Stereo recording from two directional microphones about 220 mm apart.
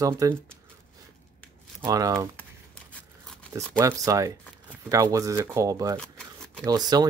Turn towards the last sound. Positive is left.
turn(degrees=-20)  # may be behind; listen again after turning